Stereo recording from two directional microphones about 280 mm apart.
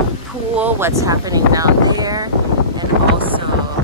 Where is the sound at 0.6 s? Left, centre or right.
Centre.